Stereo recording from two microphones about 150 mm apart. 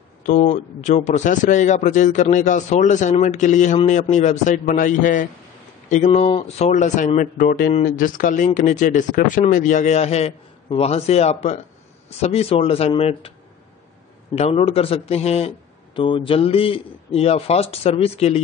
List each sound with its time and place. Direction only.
0.3 s a man's voice: 60° left (ahead or behind)
7.2 s speech: 65° left (ahead or behind)
7.7 s a man's voice: 60° left (ahead or behind); by 13.3 s 40° left (ahead or behind)
14.3 s a man's voice: 45° left (ahead or behind)